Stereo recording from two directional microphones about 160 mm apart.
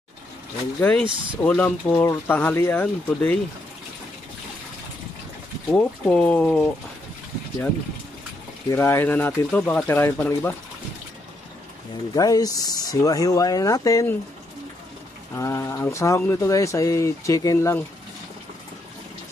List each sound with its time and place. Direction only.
0.7 s speech: 10° left (ahead or behind)
5.8 s speech: 5° left (ahead or behind)
8.6 s speech: 15° left (ahead or behind)
12.1 s speech: 25° left (ahead or behind)
15.3 s speech: 20° left (ahead or behind)